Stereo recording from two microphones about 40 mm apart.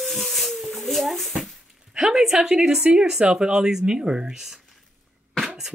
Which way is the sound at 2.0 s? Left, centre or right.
Centre.